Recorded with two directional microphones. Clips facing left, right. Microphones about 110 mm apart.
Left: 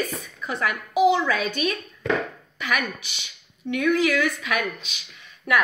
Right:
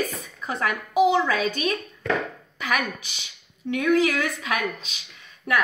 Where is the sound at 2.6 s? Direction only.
35° right (ahead or behind).